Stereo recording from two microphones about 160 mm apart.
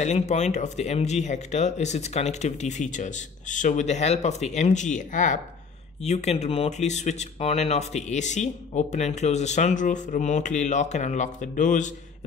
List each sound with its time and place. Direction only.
0.0 s speech: 45° left (ahead or behind)